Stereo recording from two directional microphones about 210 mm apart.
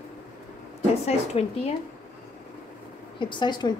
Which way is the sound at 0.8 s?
30° left (ahead or behind).